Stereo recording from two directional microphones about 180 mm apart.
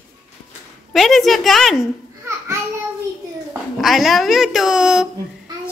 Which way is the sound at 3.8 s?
Centre (ahead or behind).